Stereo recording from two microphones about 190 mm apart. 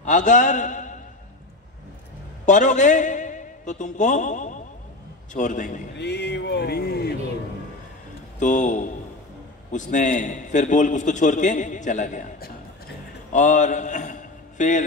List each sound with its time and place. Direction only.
0.0 s a man's voice: 40° left (ahead or behind)
2.4 s a man's voice: 40° left (ahead or behind)
5.9 s speech: 65° left (ahead or behind)
8.4 s a man's voice: 40° left (ahead or behind)